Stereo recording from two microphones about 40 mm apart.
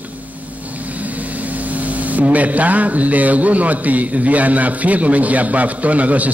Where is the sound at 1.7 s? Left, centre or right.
Right.